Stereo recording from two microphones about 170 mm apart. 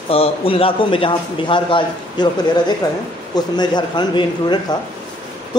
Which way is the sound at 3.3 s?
25° left (ahead or behind).